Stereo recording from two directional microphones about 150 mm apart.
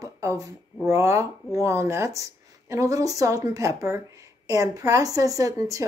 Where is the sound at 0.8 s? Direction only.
20° right (ahead or behind).